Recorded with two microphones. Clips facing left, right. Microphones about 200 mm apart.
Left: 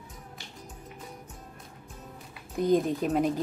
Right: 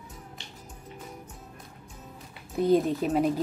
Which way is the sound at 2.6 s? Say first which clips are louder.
Right 2 dB; 5° right (ahead or behind).